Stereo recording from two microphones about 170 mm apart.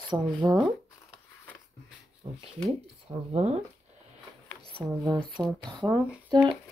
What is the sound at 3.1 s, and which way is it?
Speech, 40° right (ahead or behind).